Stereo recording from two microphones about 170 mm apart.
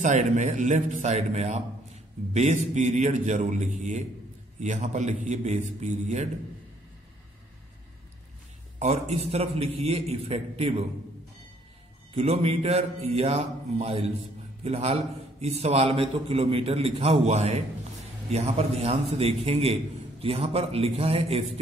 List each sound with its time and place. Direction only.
0.0 s a man's voice: 45° right (ahead or behind)
8.7 s a man's voice: 40° right (ahead or behind)
12.2 s a man's voice: 35° right (ahead or behind)